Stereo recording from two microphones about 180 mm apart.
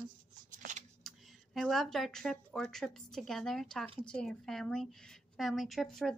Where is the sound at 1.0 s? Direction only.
Centre (ahead or behind).